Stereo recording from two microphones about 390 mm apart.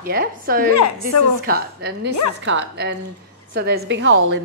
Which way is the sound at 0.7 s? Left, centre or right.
Left.